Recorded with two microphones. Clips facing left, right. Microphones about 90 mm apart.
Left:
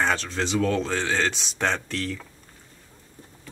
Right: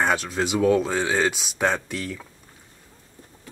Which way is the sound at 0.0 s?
10° right (ahead or behind).